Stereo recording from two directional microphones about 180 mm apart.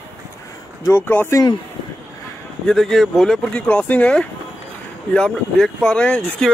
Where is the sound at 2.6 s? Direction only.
Centre (ahead or behind).